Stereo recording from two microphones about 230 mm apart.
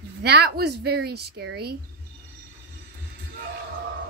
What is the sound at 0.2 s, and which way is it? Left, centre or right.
Speech, right.